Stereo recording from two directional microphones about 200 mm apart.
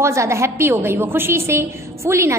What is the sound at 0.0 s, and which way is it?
A woman's voice, 15° right (ahead or behind).